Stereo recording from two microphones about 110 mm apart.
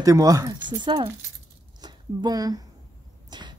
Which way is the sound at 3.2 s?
40° right (ahead or behind).